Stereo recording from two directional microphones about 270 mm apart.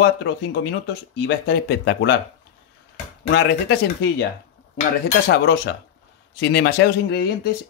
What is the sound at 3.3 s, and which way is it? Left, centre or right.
Speech, left.